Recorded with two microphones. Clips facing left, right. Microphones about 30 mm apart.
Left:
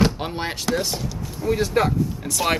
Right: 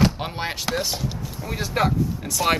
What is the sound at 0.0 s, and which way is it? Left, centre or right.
Speech, centre.